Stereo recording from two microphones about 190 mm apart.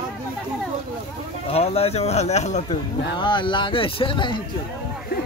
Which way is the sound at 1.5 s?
30° left (ahead or behind).